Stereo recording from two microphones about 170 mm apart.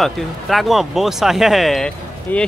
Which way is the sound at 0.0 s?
Centre (ahead or behind).